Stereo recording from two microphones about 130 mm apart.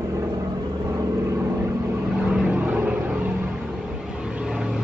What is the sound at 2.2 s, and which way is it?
Vehicle, 5° right (ahead or behind).